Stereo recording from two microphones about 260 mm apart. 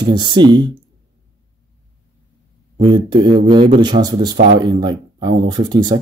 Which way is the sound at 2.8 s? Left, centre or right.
Centre.